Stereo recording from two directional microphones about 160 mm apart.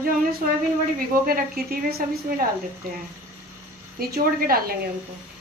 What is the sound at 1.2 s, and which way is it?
A woman's voice, 70° right (ahead or behind).